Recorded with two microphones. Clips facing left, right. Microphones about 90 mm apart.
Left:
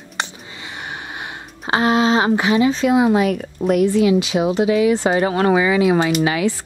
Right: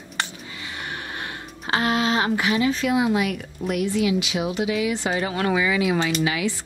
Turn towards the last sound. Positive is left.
turn(degrees=40)  # may be behind; listen again after turning